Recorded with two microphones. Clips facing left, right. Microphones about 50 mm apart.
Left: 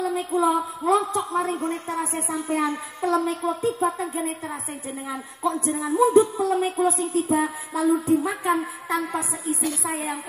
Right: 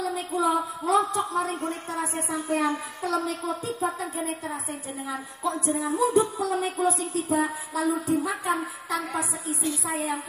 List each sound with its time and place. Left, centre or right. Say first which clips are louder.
0.0 s a sound: left 4 dB; left
1.0 s a woman's voice: left 2 dB; left
2.0 s music: left 2 dB; left
5.4 s a woman's voice: left 4 dB; left
5.9 s music: left 7 dB; left